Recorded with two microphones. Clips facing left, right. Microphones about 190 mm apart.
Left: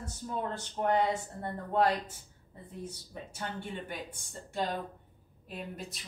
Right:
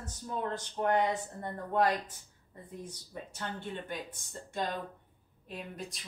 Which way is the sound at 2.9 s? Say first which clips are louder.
Even; 10° left (ahead or behind).